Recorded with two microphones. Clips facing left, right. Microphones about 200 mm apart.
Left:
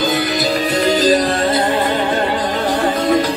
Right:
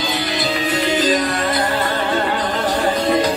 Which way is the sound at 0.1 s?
45° left (ahead or behind).